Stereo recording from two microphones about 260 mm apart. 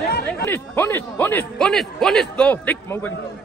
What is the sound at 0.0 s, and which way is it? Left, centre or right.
Chatter, left.